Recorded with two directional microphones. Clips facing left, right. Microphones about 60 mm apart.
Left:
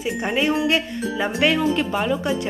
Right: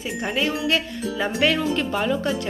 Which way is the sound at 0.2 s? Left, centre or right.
Left.